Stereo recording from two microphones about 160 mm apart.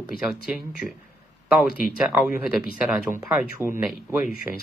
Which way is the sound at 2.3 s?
70° left (ahead or behind).